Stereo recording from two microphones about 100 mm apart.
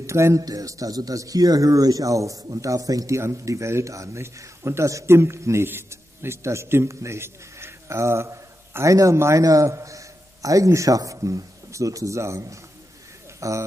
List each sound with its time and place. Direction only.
0.0 s a man's voice: 30° right (ahead or behind)